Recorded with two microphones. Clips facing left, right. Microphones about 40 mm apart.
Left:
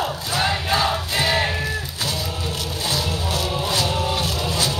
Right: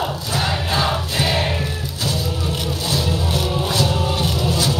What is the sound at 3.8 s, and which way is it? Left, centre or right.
Music, centre.